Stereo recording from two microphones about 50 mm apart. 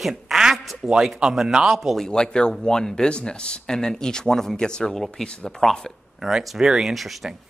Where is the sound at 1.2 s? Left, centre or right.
Centre.